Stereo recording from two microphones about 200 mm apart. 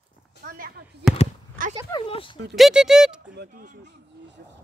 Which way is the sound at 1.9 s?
25° left (ahead or behind).